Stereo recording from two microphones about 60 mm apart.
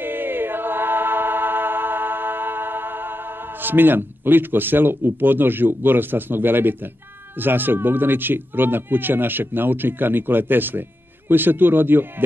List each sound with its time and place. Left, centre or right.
0.0 s choir: right
3.6 s speech: right